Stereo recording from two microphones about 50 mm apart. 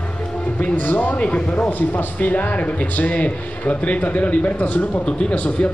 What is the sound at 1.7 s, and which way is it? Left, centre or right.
A man's voice, left.